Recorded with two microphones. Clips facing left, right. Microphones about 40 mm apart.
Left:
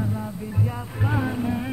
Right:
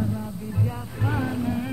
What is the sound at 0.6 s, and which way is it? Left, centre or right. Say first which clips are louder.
Music: left 2 dB; centre.